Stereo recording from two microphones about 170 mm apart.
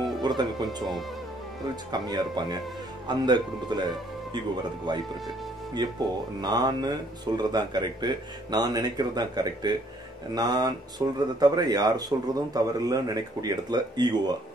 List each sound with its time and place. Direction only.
0.2 s speech: 25° right (ahead or behind)
1.9 s speech: 25° right (ahead or behind)
4.9 s speech: 25° right (ahead or behind)